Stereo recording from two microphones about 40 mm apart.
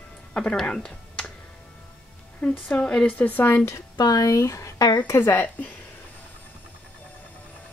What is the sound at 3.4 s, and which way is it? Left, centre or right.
Speech, left.